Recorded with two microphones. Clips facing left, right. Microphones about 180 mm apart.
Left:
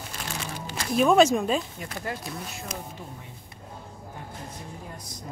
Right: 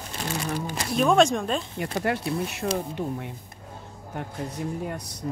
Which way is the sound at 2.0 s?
70° right (ahead or behind).